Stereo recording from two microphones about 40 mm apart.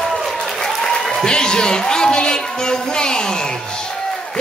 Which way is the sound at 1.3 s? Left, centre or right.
Centre.